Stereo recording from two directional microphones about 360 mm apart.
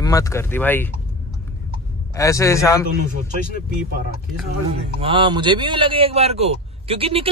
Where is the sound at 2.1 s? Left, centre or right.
Centre.